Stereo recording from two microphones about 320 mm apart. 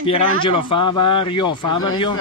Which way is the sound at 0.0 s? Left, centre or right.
Centre.